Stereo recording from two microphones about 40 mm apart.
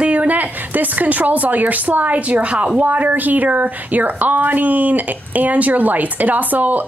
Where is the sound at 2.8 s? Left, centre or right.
Right.